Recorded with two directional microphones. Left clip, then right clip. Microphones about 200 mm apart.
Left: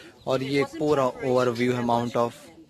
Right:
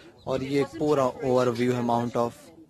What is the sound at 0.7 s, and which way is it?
Speech, 20° right (ahead or behind).